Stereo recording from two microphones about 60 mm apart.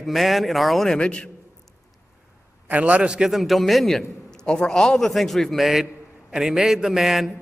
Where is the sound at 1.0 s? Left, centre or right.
Centre.